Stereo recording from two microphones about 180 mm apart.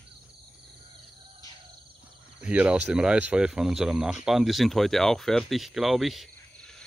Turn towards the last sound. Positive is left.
turn(degrees=0)  # may be behind; listen again after turning